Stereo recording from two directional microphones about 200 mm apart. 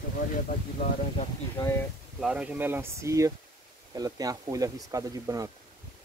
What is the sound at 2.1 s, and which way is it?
Speech, 5° right (ahead or behind).